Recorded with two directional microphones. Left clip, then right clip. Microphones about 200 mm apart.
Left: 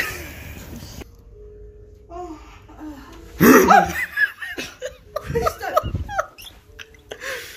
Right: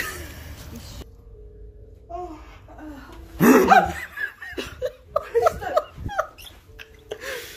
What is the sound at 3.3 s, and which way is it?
Laughter, 5° right (ahead or behind).